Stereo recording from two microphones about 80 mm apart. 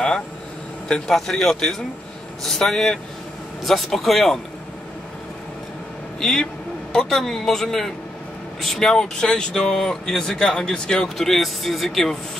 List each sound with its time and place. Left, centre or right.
0.8 s a man's voice: centre
6.1 s a man's voice: centre